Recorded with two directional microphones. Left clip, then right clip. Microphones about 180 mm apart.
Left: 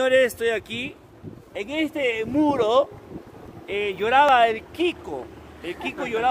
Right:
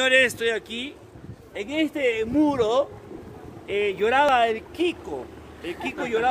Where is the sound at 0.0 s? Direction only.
25° left (ahead or behind).